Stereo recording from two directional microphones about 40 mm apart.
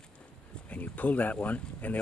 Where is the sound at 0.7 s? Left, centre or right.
Left.